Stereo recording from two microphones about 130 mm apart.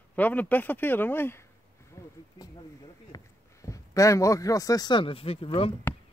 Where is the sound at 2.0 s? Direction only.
25° left (ahead or behind).